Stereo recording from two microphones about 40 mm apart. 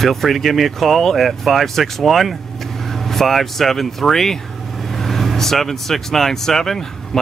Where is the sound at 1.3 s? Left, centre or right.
Centre.